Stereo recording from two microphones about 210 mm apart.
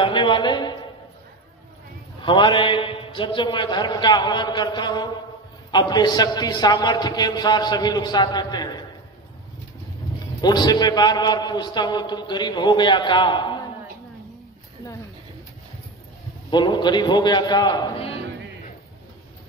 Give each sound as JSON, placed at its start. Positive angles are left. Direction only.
{"t": 0.0, "sound": "a man's voice", "side_deg": 25}
{"t": 2.2, "sound": "a man's voice", "side_deg": 20}
{"t": 10.1, "sound": "a man's voice", "side_deg": 20}
{"t": 16.4, "sound": "a man's voice", "side_deg": 20}